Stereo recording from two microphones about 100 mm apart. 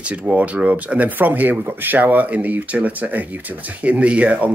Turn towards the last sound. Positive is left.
turn(degrees=-15)  # may be behind; listen again after turning